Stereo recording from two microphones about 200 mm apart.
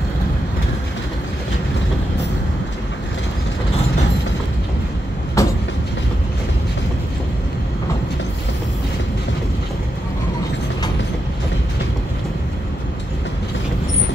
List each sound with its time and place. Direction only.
5.4 s train: 15° left (ahead or behind)